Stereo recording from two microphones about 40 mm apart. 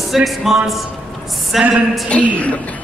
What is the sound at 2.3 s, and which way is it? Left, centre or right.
Speech, left.